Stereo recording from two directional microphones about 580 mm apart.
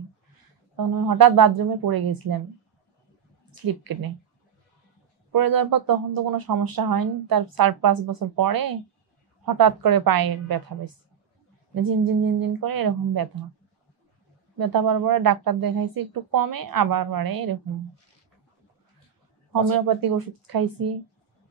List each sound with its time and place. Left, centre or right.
0.7 s speech: right
3.6 s speech: right
5.3 s speech: right
14.6 s speech: right
19.7 s speech: right